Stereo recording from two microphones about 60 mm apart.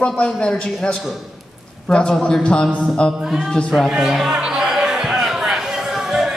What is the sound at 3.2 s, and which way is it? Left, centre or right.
Speech, centre.